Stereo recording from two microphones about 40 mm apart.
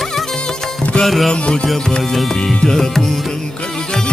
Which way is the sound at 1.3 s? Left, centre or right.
Left.